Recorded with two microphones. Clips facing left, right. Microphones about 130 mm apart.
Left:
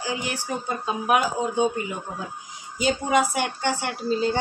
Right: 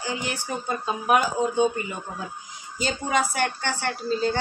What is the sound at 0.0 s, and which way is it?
A woman's voice, 5° left (ahead or behind).